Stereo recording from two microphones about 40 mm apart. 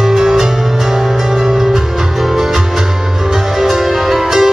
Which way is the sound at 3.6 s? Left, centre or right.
Centre.